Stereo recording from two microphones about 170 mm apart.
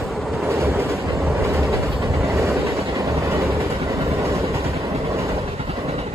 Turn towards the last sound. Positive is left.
turn(degrees=-35)  # may be behind; listen again after turning